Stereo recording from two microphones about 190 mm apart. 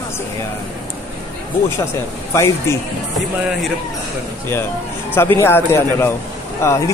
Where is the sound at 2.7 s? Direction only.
15° left (ahead or behind).